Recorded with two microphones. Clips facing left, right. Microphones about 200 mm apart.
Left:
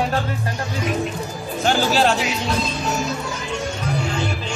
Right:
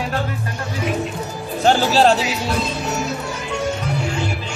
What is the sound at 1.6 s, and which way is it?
Speech, 35° right (ahead or behind).